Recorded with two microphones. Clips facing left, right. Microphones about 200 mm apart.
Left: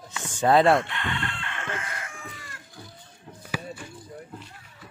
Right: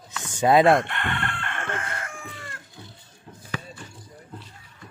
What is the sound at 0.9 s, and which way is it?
Chicken, 55° right (ahead or behind).